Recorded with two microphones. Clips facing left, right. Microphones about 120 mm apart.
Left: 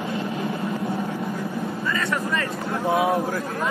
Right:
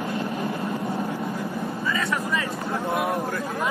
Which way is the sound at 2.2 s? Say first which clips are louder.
Left 1 dB; 10° right (ahead or behind).